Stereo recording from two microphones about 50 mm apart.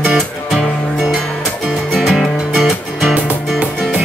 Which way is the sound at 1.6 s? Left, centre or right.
Centre.